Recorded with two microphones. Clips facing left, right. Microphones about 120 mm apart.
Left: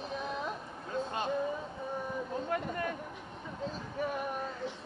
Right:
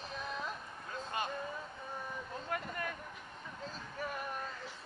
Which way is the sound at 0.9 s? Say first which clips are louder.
Left 5 dB; 20° left (ahead or behind).